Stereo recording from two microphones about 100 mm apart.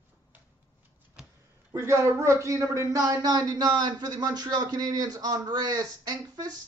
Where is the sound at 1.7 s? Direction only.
30° right (ahead or behind).